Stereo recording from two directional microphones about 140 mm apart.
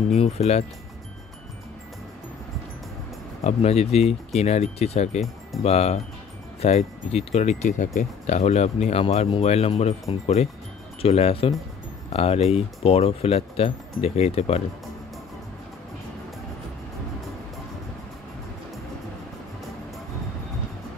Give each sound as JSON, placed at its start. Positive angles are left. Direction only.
{"t": 0.1, "sound": "speech", "side_deg": 50}
{"t": 3.4, "sound": "speech", "side_deg": 50}